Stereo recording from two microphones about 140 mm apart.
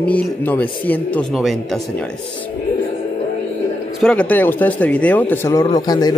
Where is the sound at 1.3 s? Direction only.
Centre (ahead or behind).